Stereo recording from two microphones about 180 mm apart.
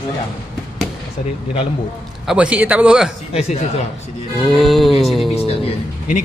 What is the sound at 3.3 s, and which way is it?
Speech, 35° left (ahead or behind).